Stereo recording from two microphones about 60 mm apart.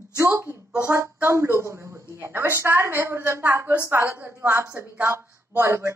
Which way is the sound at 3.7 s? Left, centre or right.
Right.